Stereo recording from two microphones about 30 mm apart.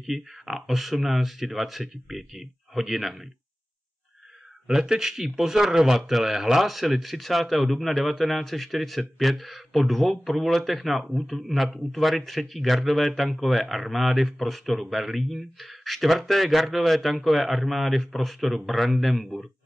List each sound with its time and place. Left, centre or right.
0.0 s a man's voice: centre
4.6 s a man's voice: centre